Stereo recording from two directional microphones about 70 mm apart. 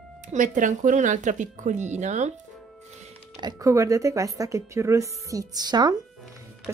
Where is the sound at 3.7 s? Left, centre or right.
Right.